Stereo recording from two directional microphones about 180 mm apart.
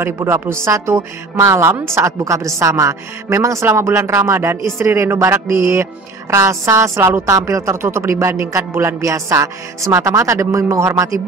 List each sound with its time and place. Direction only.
0.0 s speech: 15° right (ahead or behind)